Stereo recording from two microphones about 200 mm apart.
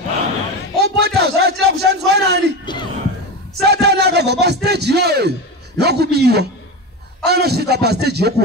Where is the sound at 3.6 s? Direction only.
55° right (ahead or behind).